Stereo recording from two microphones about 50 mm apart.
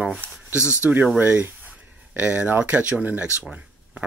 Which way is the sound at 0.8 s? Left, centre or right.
Right.